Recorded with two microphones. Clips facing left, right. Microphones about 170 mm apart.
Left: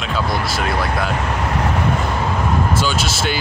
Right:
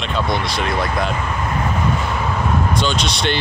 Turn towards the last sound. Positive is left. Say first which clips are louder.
# right 1 dB
turn(degrees=5)  # may be behind; listen again after turning